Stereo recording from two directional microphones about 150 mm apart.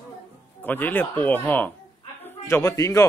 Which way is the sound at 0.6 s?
10° left (ahead or behind).